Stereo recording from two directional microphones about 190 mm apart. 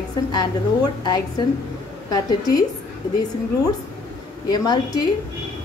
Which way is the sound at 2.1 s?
20° left (ahead or behind).